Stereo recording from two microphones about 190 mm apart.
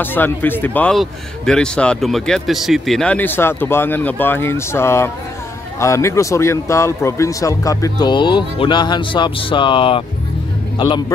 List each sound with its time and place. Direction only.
0.0 s a man's voice: 10° left (ahead or behind); by 10.0 s 30° left (ahead or behind)